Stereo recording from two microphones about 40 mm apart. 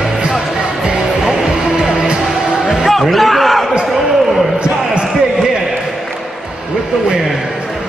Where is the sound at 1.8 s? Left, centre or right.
Centre.